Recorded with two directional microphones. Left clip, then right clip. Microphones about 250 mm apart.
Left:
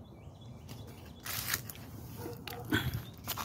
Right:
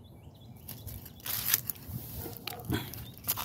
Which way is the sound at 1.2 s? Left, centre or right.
Centre.